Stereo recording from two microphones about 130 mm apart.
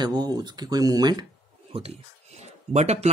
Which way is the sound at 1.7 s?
50° right (ahead or behind).